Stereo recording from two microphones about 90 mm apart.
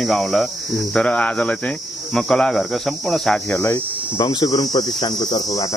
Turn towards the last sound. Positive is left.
turn(degrees=45)  # may be behind; listen again after turning